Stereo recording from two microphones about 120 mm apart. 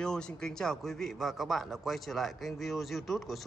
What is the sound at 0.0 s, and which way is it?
A man's voice, 5° left (ahead or behind).